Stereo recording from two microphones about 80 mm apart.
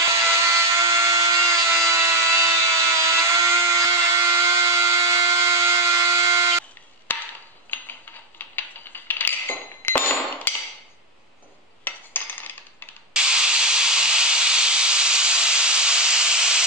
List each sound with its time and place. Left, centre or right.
0.1 s a sound: right
7.1 s a sound: left
7.7 s mechanisms: left
8.4 s coin: left
11.8 s cutlery: left
13.1 s steam: centre